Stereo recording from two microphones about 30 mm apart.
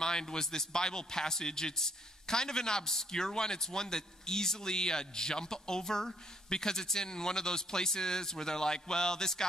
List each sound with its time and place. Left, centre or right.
0.0 s a man's voice: left